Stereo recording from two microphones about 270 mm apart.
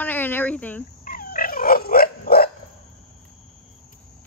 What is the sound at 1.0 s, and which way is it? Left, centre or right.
Dog, left.